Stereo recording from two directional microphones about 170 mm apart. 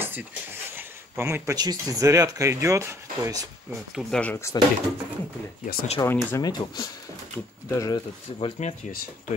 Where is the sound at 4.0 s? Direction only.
5° left (ahead or behind).